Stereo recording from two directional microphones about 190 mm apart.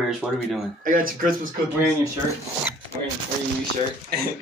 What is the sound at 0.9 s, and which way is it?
Speech, 45° right (ahead or behind).